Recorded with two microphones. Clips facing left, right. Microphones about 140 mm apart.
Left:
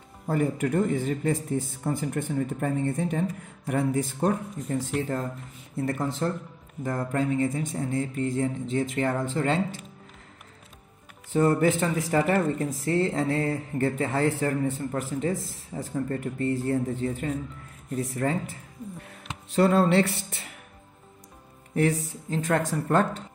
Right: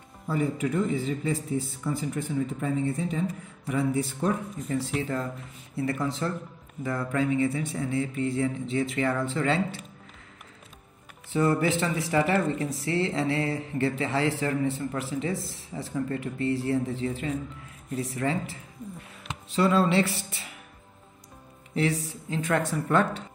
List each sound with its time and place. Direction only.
0.3 s speech: 50° left (ahead or behind)
11.3 s speech: 45° left (ahead or behind)
21.7 s speech: 45° left (ahead or behind)